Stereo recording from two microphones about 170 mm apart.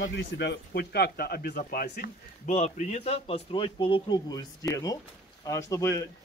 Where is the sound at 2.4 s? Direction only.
40° left (ahead or behind).